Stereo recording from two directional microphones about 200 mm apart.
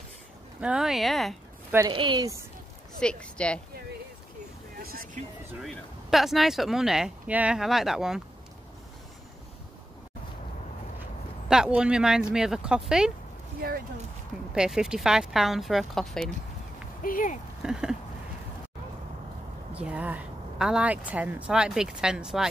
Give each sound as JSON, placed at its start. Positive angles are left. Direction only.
{"t": 0.6, "sound": "a woman's voice", "side_deg": -5}
{"t": 1.9, "sound": "speech", "side_deg": -25}
{"t": 3.0, "sound": "a woman's voice", "side_deg": 5}
{"t": 4.7, "sound": "speech", "side_deg": -45}
{"t": 5.6, "sound": "a woman's voice", "side_deg": 0}
{"t": 11.4, "sound": "a woman's voice", "side_deg": -5}
{"t": 13.6, "sound": "speech", "side_deg": -45}
{"t": 14.5, "sound": "a woman's voice", "side_deg": -5}
{"t": 17.0, "sound": "speech", "side_deg": 45}
{"t": 17.6, "sound": "a sound", "side_deg": -5}
{"t": 19.7, "sound": "a woman's voice", "side_deg": -5}